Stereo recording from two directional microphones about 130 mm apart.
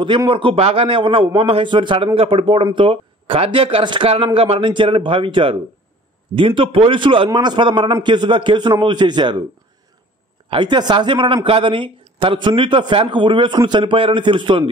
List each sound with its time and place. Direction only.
0.3 s speech: 45° right (ahead or behind)
10.5 s speech: 35° right (ahead or behind)